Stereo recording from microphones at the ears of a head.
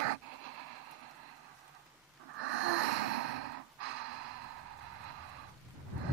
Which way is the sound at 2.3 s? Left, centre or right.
Right.